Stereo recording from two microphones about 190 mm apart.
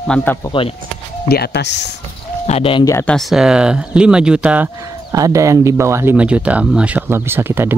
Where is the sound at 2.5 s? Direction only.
30° left (ahead or behind).